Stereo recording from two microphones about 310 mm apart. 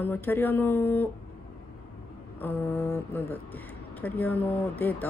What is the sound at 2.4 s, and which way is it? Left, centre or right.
Speech, centre.